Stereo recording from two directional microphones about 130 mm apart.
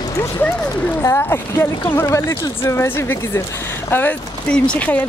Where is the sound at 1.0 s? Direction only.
20° left (ahead or behind).